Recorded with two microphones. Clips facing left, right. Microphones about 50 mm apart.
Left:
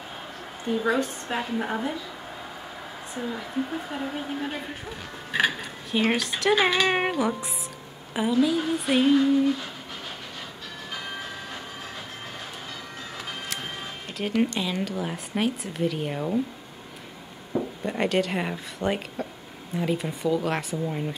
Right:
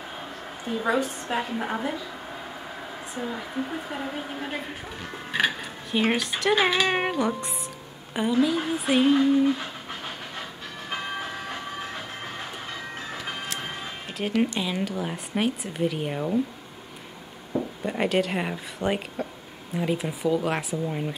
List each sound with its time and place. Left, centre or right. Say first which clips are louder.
0.8 s speech: right 3 dB; centre
3.2 s speech: left 1 dB; centre
9.1 s a sound: left 1 dB; centre
10.9 s train: right 4 dB; right
14.1 s speech: even; centre
17.6 s speech: even; centre